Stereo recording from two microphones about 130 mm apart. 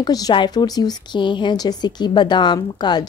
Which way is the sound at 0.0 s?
30° left (ahead or behind).